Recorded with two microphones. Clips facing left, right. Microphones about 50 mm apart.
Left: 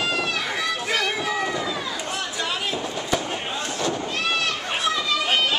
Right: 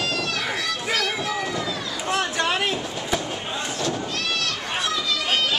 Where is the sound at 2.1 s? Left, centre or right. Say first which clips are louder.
Right 5 dB; right.